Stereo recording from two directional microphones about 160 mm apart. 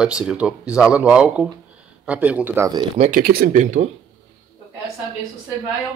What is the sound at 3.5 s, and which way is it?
Speech, 50° right (ahead or behind).